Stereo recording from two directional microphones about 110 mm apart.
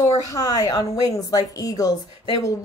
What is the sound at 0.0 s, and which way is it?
Speech, 35° left (ahead or behind).